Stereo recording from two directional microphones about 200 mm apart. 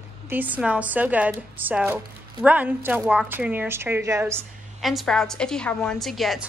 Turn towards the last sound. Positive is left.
turn(degrees=0)  # may be behind; listen again after turning